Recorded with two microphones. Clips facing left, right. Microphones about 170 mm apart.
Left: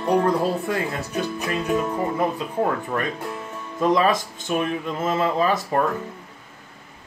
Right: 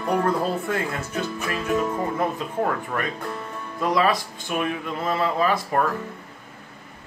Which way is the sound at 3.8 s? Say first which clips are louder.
Left 2 dB; 20° left (ahead or behind).